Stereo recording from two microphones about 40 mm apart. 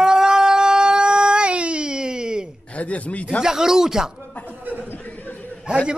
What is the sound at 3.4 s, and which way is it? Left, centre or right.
Speech, centre.